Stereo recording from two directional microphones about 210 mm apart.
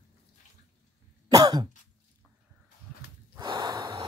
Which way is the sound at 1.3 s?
20° right (ahead or behind).